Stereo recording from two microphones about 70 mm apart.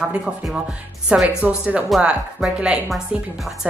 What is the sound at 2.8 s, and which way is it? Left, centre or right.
Speech, centre.